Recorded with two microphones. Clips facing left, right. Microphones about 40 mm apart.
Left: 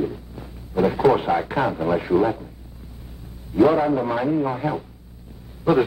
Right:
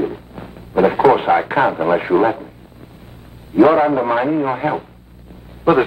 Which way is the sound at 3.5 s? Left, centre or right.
Right.